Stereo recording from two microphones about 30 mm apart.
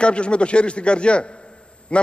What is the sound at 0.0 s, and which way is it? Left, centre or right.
A man's voice, left.